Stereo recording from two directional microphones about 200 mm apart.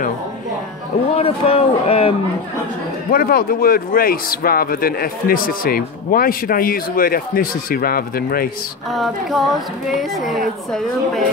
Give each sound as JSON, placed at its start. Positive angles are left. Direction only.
{"t": 1.1, "sound": "speech", "side_deg": 30}
{"t": 3.1, "sound": "a man's voice", "side_deg": 50}
{"t": 8.9, "sound": "speech", "side_deg": 0}